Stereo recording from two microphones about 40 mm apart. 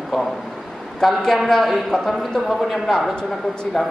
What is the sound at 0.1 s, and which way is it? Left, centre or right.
A man's voice, centre.